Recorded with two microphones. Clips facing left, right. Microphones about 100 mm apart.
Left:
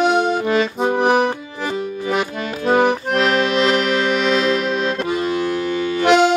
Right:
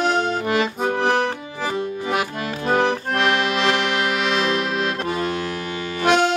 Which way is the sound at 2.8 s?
15° left (ahead or behind).